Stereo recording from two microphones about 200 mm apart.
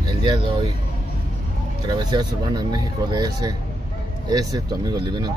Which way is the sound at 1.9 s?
20° right (ahead or behind).